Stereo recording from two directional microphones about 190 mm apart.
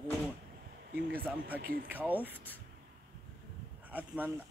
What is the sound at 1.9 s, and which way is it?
Speech, 10° right (ahead or behind).